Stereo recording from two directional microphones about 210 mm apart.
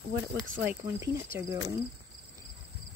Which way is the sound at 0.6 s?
10° right (ahead or behind).